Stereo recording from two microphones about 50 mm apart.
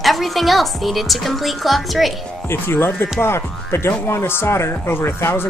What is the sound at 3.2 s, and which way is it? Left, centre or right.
Music, left.